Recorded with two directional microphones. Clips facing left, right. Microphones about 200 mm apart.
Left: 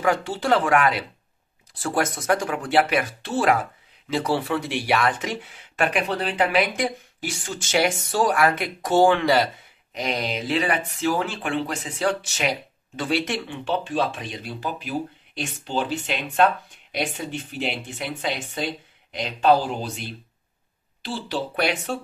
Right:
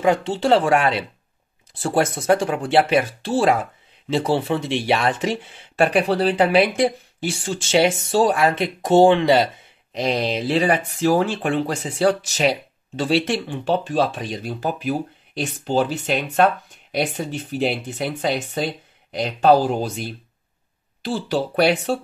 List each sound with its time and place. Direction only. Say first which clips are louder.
0.0 s speech: right 4 dB; 25° right (ahead or behind)
9.9 s speech: right 5 dB; 30° right (ahead or behind)